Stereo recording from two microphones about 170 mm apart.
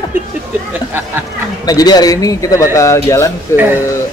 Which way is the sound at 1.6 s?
25° left (ahead or behind).